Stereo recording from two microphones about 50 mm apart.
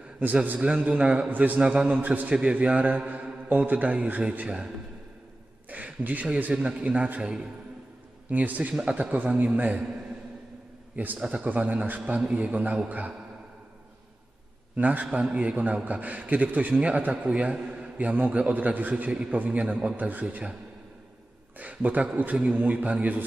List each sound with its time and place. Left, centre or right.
0.2 s a man's voice: right
1.3 s a man's voice: right
1.6 s a man's voice: right
1.9 s a man's voice: right
5.7 s a man's voice: right
8.3 s a man's voice: right
11.1 s a man's voice: centre
11.4 s a man's voice: right
12.0 s a man's voice: centre
14.8 s a man's voice: right
17.9 s a man's voice: right
21.5 s a man's voice: right